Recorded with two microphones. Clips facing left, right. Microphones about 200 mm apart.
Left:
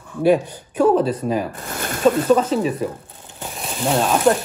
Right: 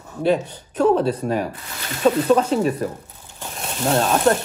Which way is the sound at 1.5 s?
50° left (ahead or behind).